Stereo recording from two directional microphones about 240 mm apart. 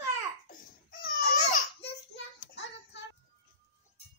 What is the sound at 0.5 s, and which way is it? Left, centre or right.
Babbling, left.